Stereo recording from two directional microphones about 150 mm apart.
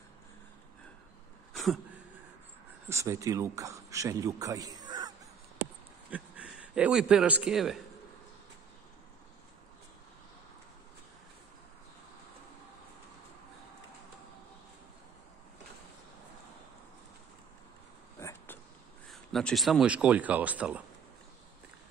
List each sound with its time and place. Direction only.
2.9 s a man's voice: 20° right (ahead or behind)
6.0 s a man's voice: 10° right (ahead or behind)
18.2 s a sound: 15° left (ahead or behind)
19.0 s speech: centre (ahead or behind)